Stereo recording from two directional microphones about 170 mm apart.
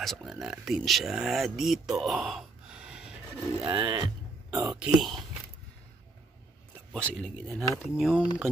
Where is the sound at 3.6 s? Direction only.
30° right (ahead or behind).